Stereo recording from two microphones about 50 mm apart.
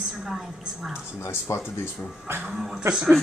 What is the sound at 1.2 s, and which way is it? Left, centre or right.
Speech, left.